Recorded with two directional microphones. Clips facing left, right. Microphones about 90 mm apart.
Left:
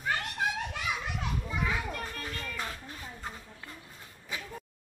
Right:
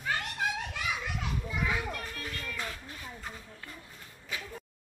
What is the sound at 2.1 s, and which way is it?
Music, 30° left (ahead or behind).